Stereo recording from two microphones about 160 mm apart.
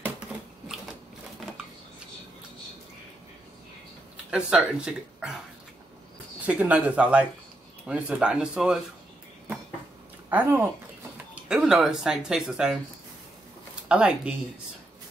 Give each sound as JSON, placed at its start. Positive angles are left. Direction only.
{"t": 0.3, "sound": "typewriter", "side_deg": 0}
{"t": 4.3, "sound": "speech", "side_deg": -5}
{"t": 6.4, "sound": "speech", "side_deg": -10}
{"t": 10.3, "sound": "speech", "side_deg": -10}
{"t": 13.8, "sound": "speech", "side_deg": -5}